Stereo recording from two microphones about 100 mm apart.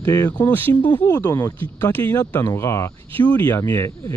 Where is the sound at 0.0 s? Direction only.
25° left (ahead or behind).